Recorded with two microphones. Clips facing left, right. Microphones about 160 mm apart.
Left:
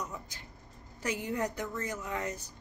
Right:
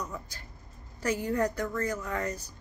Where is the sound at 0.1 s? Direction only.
20° left (ahead or behind).